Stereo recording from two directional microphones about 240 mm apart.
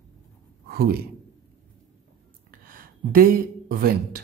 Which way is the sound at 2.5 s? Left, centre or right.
Right.